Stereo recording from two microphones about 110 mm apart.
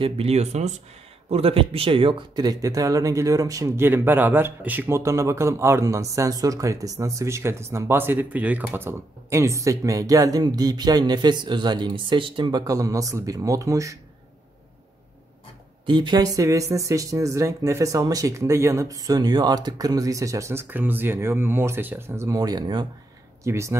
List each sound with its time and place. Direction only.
0.0 s speech: 70° right (ahead or behind); by 0.7 s 90° right
1.3 s speech: 60° right (ahead or behind)
2.4 s a man's voice: 35° right (ahead or behind)
15.8 s a man's voice: 45° right (ahead or behind); by 22.4 s 25° right (ahead or behind)
22.4 s speech: 40° right (ahead or behind)
23.4 s a man's voice: 25° right (ahead or behind)